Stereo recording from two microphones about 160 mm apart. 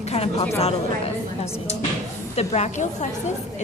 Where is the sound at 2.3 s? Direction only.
45° left (ahead or behind).